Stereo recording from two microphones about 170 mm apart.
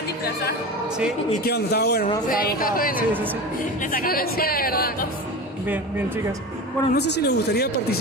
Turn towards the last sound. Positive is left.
turn(degrees=70)  # may be behind; listen again after turning